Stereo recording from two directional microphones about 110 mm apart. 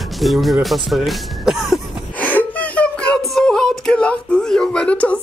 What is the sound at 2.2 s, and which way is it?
Whimper, 15° left (ahead or behind).